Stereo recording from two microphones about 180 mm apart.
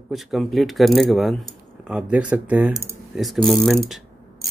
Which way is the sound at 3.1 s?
Centre (ahead or behind).